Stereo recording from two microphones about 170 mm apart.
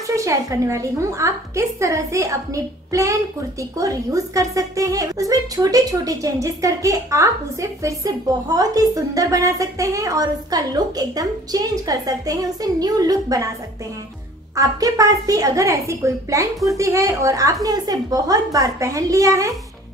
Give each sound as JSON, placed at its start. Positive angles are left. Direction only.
{"t": 0.0, "sound": "speech", "side_deg": -20}
{"t": 14.5, "sound": "speech", "side_deg": -20}